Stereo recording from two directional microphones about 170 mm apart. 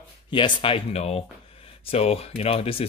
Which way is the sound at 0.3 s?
30° left (ahead or behind).